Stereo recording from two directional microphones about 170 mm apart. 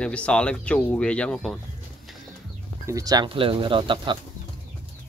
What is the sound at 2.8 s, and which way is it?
Speech, 20° right (ahead or behind).